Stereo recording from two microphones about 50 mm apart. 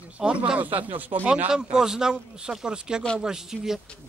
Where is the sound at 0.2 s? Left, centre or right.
Centre.